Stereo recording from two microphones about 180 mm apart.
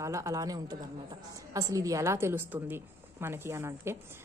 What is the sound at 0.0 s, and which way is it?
Speech, 15° right (ahead or behind).